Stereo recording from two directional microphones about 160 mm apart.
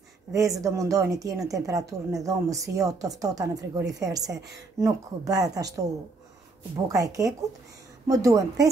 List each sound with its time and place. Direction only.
0.3 s speech: 20° right (ahead or behind)
6.9 s speech: 20° right (ahead or behind)